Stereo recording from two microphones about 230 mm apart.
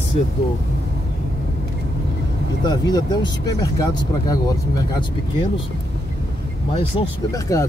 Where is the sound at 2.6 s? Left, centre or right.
Centre.